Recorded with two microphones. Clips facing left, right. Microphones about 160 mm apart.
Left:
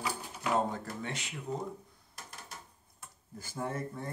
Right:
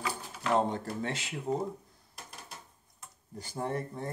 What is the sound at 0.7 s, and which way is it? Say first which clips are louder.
Speech: right 4 dB; 30° right (ahead or behind).